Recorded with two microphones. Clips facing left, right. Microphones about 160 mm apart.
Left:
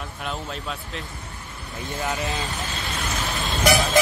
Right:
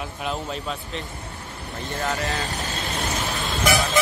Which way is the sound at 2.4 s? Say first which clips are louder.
Right 1 dB; 40° right (ahead or behind).